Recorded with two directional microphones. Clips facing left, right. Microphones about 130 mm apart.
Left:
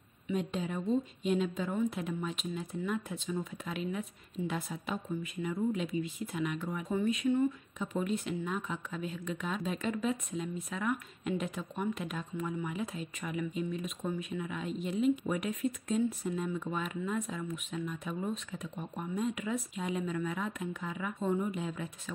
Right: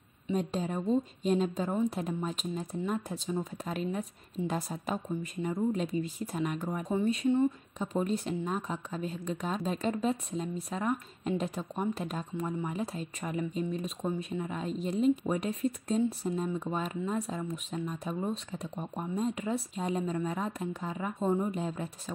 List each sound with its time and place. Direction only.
0.3 s speech: 35° right (ahead or behind)